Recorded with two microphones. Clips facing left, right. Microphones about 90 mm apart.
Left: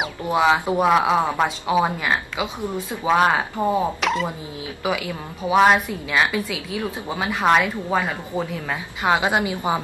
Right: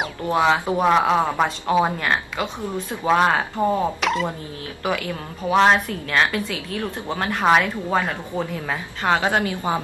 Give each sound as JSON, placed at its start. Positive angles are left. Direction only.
{"t": 0.0, "sound": "a woman's voice", "side_deg": 5}